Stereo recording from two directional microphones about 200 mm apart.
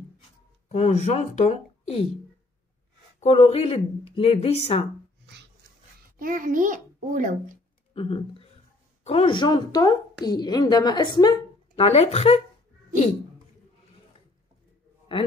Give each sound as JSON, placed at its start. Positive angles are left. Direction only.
{"t": 0.7, "sound": "speech", "side_deg": 35}
{"t": 3.2, "sound": "speech", "side_deg": 30}
{"t": 5.2, "sound": "a sound", "side_deg": -55}
{"t": 6.1, "sound": "a child's voice", "side_deg": -45}
{"t": 7.9, "sound": "a woman's voice", "side_deg": 25}